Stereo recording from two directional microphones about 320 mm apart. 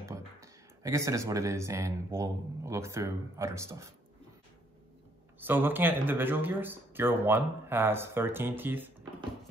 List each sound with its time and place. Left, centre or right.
0.8 s speech: centre
5.4 s speech: centre